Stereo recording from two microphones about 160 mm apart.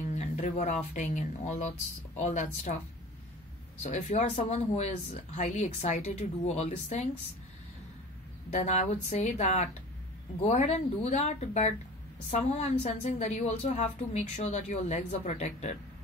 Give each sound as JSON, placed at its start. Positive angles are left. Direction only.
{"t": 0.1, "sound": "speech", "side_deg": 45}
{"t": 3.8, "sound": "speech", "side_deg": 45}
{"t": 8.5, "sound": "speech", "side_deg": 45}